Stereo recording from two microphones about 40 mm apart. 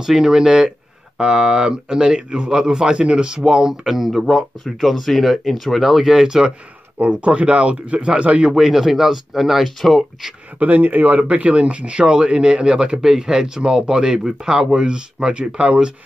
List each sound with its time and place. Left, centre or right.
0.0 s speech: centre
3.8 s speech: centre
5.9 s speech: centre
7.0 s speech: right
8.5 s speech: centre
10.6 s speech: right
11.1 s speech: right